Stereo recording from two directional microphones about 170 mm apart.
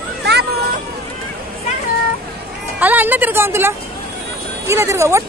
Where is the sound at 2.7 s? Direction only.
10° right (ahead or behind).